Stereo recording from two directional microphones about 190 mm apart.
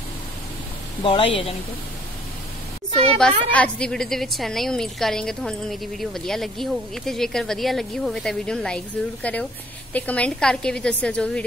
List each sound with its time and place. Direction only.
1.0 s speech: 30° left (ahead or behind)
3.2 s a woman's voice: 5° left (ahead or behind)